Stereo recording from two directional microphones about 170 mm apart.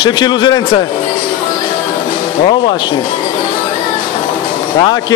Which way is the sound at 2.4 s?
30° left (ahead or behind).